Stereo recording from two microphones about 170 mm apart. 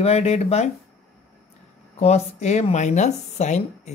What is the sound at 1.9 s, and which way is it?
Speech, 40° left (ahead or behind).